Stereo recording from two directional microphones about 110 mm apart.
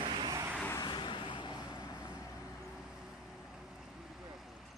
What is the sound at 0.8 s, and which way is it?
Vehicle, 45° left (ahead or behind).